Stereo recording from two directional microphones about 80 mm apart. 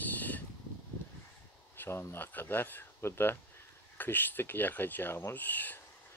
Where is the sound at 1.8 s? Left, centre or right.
Left.